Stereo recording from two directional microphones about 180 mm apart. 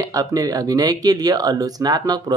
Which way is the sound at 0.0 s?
20° right (ahead or behind).